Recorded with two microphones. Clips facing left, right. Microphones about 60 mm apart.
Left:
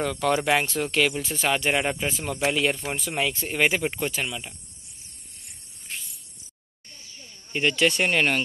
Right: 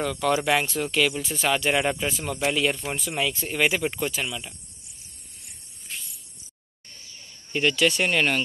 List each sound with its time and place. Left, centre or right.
0.0 s speech: left
3.1 s speech: left
7.7 s speech: left